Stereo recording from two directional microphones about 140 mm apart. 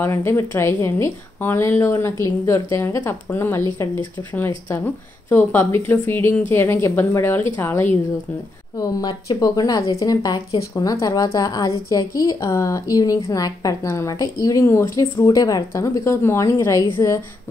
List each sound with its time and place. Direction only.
0.0 s a woman's voice: 20° left (ahead or behind)
8.7 s a woman's voice: 30° left (ahead or behind)